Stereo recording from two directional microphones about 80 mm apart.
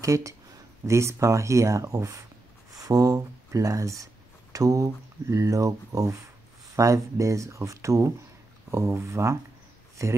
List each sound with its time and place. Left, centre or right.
0.0 s speech: right